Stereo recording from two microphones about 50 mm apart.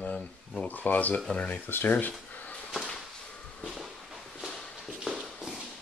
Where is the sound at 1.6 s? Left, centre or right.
Left.